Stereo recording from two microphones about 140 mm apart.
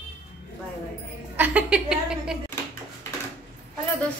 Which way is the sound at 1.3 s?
10° right (ahead or behind).